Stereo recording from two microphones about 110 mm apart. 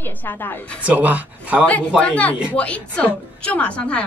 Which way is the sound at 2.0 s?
10° left (ahead or behind).